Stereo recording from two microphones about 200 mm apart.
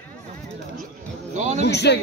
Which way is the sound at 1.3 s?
35° right (ahead or behind).